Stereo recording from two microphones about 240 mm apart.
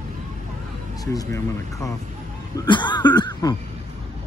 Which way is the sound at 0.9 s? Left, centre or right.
Centre.